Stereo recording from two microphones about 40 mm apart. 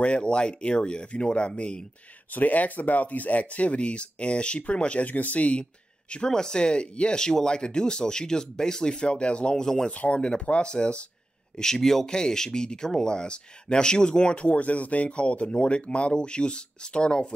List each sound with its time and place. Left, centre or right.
0.0 s speech: left
2.3 s speech: left
9.8 s speech: left
11.5 s speech: centre